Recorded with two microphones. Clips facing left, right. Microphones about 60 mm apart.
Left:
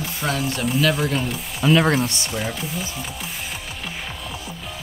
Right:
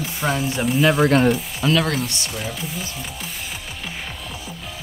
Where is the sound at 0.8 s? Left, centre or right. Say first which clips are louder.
Right 4 dB; centre.